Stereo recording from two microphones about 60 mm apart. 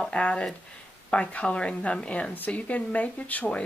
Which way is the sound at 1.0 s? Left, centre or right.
Left.